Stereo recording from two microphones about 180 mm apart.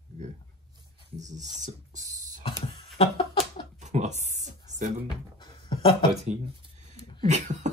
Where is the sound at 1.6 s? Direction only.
40° right (ahead or behind).